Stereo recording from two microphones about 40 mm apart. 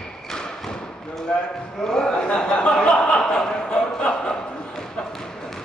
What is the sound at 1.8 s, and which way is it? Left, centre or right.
Chuckle, centre.